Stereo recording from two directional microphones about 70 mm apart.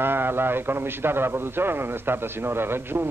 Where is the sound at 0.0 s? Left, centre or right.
Right.